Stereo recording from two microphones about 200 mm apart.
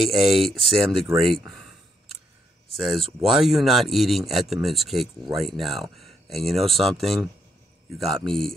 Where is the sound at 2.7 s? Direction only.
Centre (ahead or behind).